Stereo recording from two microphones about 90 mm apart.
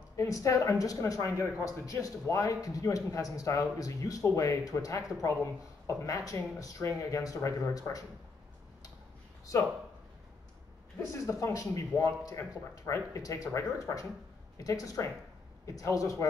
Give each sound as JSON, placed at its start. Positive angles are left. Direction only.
{"t": 0.1, "sound": "speech", "side_deg": 35}
{"t": 11.2, "sound": "speech", "side_deg": 35}